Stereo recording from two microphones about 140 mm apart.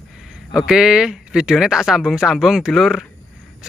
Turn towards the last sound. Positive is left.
turn(degrees=0)  # may be behind; listen again after turning